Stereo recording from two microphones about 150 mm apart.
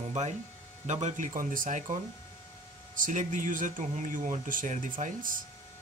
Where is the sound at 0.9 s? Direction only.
50° right (ahead or behind).